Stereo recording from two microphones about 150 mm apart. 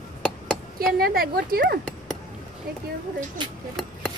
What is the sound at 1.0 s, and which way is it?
Speech, 80° right.